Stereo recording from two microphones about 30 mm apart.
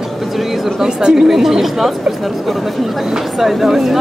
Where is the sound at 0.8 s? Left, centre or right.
Right.